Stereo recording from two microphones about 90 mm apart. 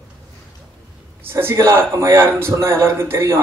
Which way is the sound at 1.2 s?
30° right (ahead or behind).